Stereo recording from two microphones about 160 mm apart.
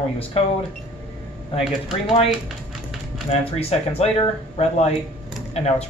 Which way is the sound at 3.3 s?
40° left (ahead or behind).